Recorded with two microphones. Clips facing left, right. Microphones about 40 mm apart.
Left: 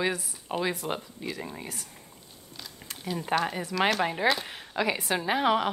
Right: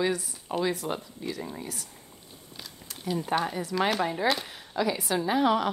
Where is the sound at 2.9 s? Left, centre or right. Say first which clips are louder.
Left 3 dB; left.